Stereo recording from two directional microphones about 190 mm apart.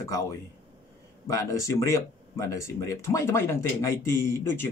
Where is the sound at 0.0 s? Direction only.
15° left (ahead or behind).